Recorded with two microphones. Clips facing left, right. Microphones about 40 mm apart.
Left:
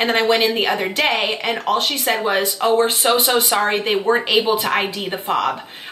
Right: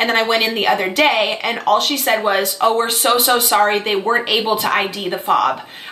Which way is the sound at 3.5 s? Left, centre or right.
Centre.